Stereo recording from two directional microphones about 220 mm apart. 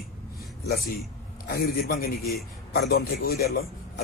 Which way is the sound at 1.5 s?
40° left (ahead or behind).